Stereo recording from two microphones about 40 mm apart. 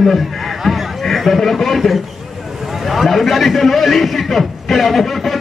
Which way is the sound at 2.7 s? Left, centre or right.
Centre.